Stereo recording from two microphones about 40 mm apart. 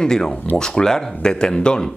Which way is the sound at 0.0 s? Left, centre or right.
Centre.